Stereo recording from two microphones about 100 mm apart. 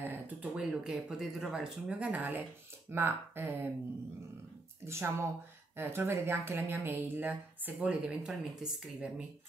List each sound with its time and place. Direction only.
0.0 s a sound: 20° right (ahead or behind)
0.6 s speech: 10° right (ahead or behind)
4.8 s speech: 25° right (ahead or behind); by 9.1 s 5° right (ahead or behind)